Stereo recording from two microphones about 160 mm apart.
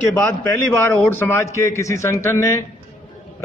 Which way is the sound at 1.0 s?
15° left (ahead or behind).